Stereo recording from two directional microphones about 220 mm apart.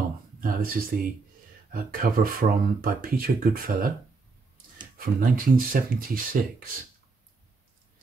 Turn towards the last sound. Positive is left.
turn(degrees=-40)  # may be behind; listen again after turning